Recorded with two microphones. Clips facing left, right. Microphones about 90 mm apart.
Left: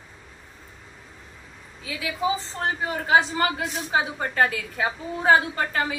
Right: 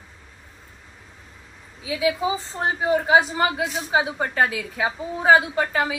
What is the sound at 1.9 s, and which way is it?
A woman's voice, 20° right (ahead or behind).